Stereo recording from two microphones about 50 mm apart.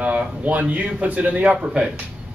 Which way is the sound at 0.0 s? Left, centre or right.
Right.